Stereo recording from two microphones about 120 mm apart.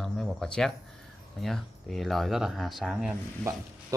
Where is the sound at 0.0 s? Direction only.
5° left (ahead or behind).